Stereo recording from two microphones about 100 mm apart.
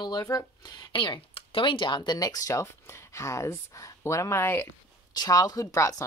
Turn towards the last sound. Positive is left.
turn(degrees=35)  # may be behind; listen again after turning